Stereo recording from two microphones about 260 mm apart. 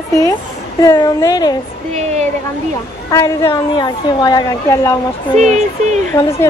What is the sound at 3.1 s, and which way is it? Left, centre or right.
A woman's voice, centre.